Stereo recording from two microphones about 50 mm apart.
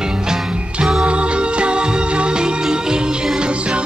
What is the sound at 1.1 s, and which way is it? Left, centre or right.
Music, right.